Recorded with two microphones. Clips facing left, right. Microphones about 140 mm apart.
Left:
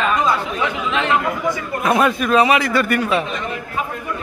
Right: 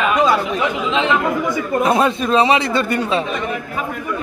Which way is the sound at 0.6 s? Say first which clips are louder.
Right 2 dB; 20° right (ahead or behind).